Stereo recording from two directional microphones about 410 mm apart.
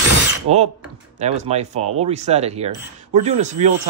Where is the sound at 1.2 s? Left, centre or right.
Centre.